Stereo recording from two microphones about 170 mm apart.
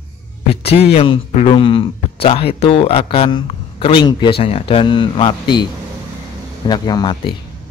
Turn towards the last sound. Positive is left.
turn(degrees=25)  # may be behind; listen again after turning